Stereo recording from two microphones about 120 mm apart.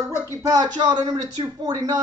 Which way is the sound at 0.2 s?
30° right (ahead or behind).